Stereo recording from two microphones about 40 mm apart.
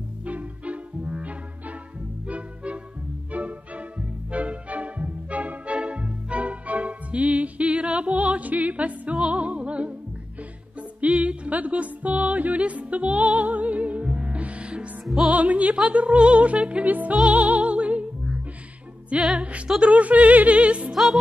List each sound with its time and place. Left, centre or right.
0.2 s music: right
15.7 s speech: right
16.8 s music: right
19.8 s speech: right
20.9 s music: centre